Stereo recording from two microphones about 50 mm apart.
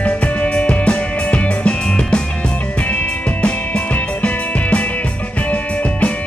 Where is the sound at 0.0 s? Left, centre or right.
Left.